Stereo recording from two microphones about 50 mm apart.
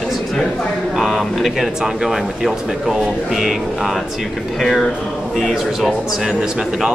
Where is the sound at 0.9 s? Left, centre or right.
Centre.